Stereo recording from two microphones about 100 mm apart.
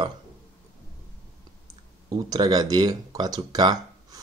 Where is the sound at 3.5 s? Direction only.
40° right (ahead or behind).